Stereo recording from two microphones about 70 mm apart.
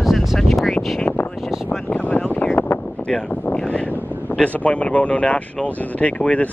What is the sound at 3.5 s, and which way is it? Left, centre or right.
Vehicle, centre.